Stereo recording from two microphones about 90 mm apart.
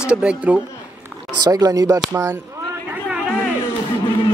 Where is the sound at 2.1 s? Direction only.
25° right (ahead or behind).